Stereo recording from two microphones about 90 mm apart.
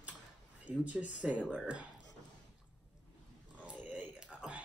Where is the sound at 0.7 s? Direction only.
15° right (ahead or behind).